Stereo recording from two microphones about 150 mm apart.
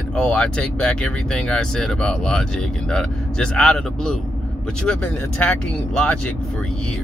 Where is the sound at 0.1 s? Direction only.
10° left (ahead or behind).